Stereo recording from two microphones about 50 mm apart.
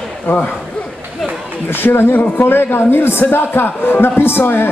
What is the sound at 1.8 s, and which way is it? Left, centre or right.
A man's voice, left.